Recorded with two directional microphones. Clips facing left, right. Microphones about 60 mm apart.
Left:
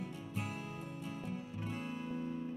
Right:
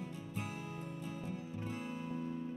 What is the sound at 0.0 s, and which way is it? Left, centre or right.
Music, left.